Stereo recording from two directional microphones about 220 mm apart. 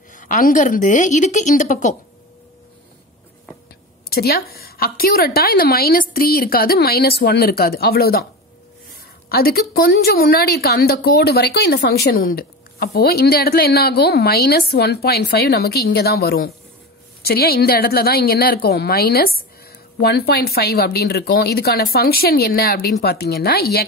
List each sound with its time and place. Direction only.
0.1 s a woman's voice: 35° left (ahead or behind)
4.1 s a woman's voice: 45° left (ahead or behind)
9.3 s a woman's voice: 45° left (ahead or behind)